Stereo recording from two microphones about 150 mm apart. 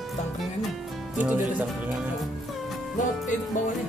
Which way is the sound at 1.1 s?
10° right (ahead or behind).